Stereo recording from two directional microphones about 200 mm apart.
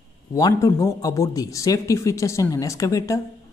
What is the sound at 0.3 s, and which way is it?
A man's voice, 15° left (ahead or behind).